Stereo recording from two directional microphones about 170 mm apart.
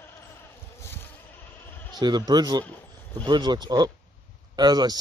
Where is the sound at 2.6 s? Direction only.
10° left (ahead or behind).